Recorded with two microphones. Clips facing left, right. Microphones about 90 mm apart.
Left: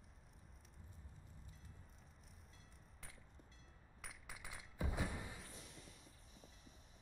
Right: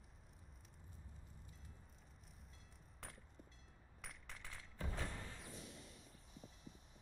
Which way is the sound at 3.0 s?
65° right (ahead or behind).